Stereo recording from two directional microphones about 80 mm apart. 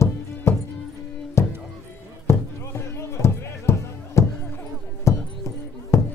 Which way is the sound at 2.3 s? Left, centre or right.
Left.